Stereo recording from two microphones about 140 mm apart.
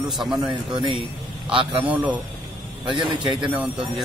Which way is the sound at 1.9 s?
10° right (ahead or behind).